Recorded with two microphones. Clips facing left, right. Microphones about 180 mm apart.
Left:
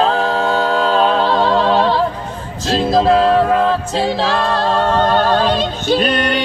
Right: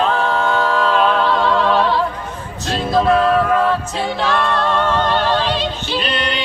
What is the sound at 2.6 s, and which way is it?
Music, 30° left (ahead or behind).